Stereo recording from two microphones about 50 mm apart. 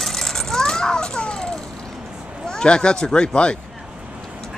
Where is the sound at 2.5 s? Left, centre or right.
Centre.